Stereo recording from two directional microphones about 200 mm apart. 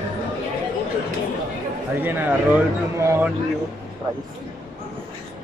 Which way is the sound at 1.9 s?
10° right (ahead or behind).